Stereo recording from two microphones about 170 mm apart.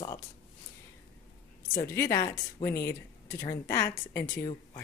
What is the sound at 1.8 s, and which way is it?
A woman's voice, 15° left (ahead or behind).